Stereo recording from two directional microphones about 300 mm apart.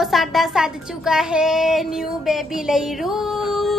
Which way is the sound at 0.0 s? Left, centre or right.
Centre.